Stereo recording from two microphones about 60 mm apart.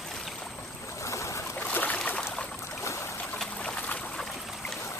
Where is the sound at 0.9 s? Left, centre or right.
Left.